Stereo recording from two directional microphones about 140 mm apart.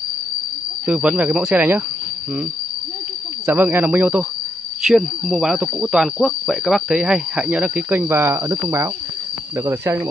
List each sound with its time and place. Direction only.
0.8 s speech: 10° right (ahead or behind)
3.4 s speech: 15° right (ahead or behind)
4.8 s speech: centre (ahead or behind); by 10.0 s 15° right (ahead or behind)